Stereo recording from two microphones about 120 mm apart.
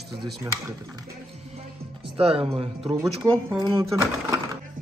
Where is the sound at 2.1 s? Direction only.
55° right (ahead or behind).